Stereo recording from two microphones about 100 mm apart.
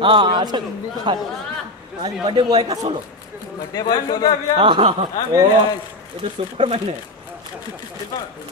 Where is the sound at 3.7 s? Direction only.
45° left (ahead or behind).